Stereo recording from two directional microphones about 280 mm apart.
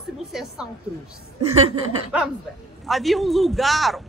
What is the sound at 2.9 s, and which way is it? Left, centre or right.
Speech, centre.